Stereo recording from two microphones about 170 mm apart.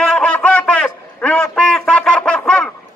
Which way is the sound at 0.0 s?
5° left (ahead or behind).